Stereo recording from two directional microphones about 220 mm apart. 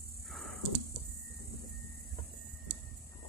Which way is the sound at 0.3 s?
Centre (ahead or behind).